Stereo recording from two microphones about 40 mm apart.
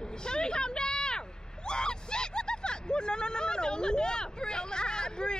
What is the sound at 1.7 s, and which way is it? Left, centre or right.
Vehicle, left.